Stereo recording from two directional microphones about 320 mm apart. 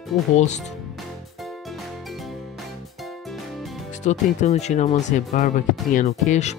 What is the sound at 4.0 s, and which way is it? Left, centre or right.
Speech, left.